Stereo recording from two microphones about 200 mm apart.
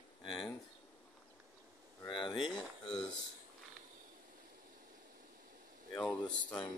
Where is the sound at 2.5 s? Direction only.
5° left (ahead or behind).